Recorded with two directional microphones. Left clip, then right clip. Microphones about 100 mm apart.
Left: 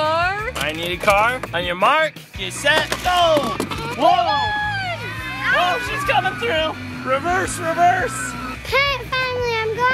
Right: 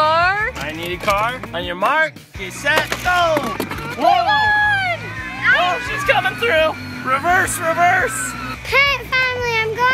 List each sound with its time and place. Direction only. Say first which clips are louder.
0.0 s a sound: right 4 dB; 20° right (ahead or behind)
0.8 s speech: left 2 dB; 45° left (ahead or behind)
2.6 s speech: even; 20° left (ahead or behind)
3.3 s speech: left 1 dB; centre (ahead or behind)
4.1 s a sound: right 6 dB; 25° right (ahead or behind)
5.9 s speech: right 2 dB; 20° right (ahead or behind); by 8.1 s 40° right (ahead or behind)
8.7 s child singing: right 4 dB; 15° right (ahead or behind)